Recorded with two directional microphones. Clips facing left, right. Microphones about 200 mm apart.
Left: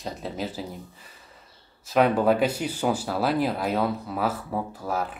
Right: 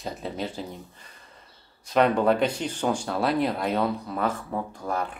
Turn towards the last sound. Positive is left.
turn(degrees=5)  # may be behind; listen again after turning